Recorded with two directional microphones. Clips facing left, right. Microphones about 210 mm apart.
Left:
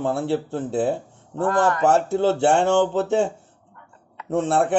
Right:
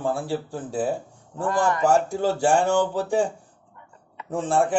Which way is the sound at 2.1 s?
25° left (ahead or behind).